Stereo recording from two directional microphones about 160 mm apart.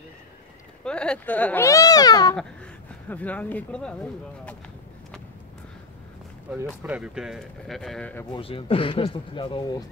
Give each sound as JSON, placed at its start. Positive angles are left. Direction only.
{"t": 0.8, "sound": "speech", "side_deg": 5}
{"t": 2.3, "sound": "speech", "side_deg": 10}
{"t": 6.6, "sound": "speech", "side_deg": -10}
{"t": 8.3, "sound": "speech", "side_deg": 35}